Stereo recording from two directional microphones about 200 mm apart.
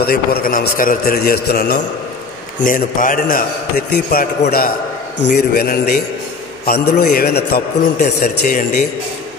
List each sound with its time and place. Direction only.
0.0 s a man's voice: 50° left (ahead or behind)
5.3 s a man's voice: 50° left (ahead or behind)